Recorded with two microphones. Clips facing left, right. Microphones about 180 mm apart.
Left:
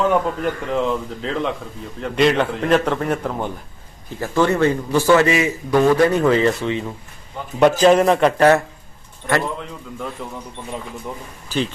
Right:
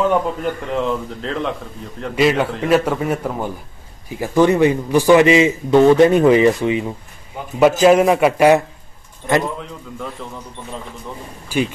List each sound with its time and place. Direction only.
0.0 s a man's voice: centre (ahead or behind)
9.6 s a man's voice: centre (ahead or behind)
11.4 s a man's voice: 10° right (ahead or behind)